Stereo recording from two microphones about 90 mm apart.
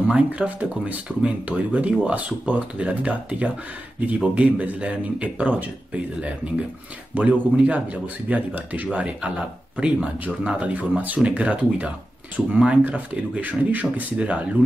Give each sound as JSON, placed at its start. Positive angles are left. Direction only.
{"t": 0.1, "sound": "speech", "side_deg": -15}